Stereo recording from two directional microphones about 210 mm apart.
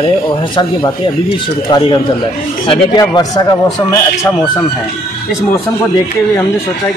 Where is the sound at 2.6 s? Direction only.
20° left (ahead or behind).